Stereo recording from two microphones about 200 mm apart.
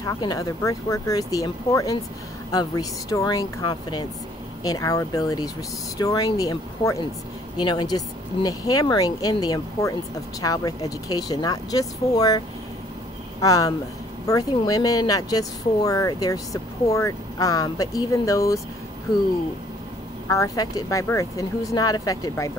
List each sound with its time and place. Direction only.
0.0 s speech: 20° left (ahead or behind)
20.2 s speech: 15° left (ahead or behind)